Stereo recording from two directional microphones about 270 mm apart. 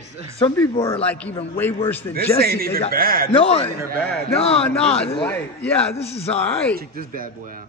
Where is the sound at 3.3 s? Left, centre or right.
Left.